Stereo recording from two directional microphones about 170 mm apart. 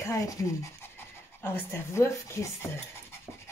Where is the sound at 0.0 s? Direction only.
15° left (ahead or behind).